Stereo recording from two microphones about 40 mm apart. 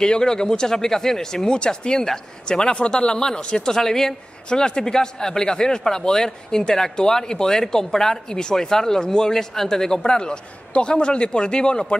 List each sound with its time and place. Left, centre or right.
0.0 s speech: centre